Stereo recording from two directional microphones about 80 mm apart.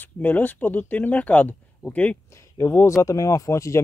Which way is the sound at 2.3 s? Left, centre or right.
Left.